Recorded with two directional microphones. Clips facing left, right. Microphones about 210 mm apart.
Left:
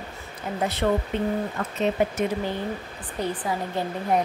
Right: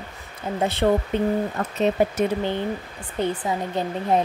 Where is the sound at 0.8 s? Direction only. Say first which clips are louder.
Right 3 dB; 35° right (ahead or behind).